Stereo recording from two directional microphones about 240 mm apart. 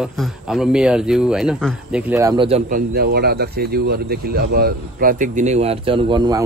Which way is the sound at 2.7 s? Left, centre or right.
Right.